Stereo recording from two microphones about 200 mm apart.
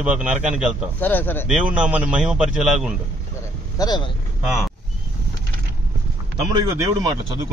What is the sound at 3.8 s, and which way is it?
Speech, 20° left (ahead or behind).